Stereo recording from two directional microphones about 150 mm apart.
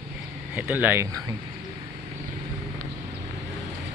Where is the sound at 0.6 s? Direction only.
10° right (ahead or behind).